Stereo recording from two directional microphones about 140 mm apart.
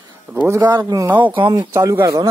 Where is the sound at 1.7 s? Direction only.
20° right (ahead or behind).